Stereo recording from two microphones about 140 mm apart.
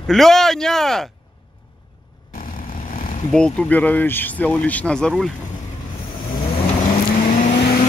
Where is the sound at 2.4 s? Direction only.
75° left (ahead or behind).